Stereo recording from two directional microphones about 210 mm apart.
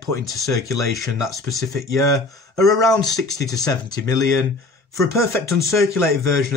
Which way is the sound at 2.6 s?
15° left (ahead or behind).